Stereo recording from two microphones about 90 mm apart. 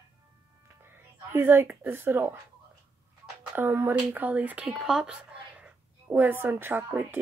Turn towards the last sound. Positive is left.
turn(degrees=-25)  # may be behind; listen again after turning